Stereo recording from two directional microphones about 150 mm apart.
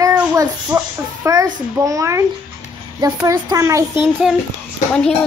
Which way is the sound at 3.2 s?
20° right (ahead or behind).